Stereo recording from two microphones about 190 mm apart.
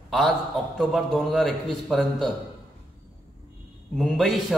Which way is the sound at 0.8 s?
Centre (ahead or behind).